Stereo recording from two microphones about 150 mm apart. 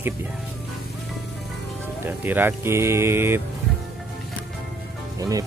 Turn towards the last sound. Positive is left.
turn(degrees=-25)  # may be behind; listen again after turning